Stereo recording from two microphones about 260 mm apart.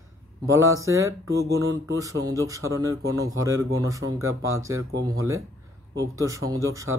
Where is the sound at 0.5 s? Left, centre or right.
Centre.